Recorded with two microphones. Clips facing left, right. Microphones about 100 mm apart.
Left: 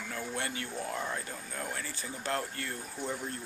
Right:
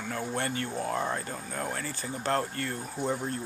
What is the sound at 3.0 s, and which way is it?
Speech, 30° right (ahead or behind).